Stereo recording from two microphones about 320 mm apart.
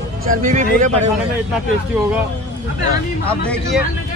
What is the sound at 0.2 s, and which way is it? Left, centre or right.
Speech, right.